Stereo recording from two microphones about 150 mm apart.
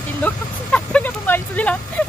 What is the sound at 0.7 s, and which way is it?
Vehicle, 10° left (ahead or behind).